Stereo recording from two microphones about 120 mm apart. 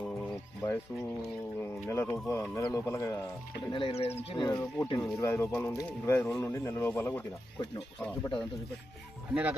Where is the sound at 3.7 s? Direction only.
50° left (ahead or behind).